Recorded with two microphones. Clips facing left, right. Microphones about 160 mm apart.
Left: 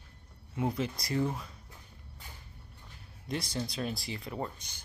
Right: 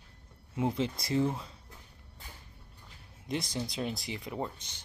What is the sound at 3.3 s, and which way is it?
Speech, 20° right (ahead or behind).